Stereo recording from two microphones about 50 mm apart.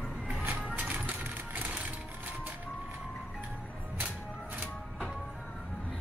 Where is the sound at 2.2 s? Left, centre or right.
Right.